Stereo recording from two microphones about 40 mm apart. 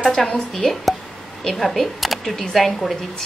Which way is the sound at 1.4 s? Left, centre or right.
Centre.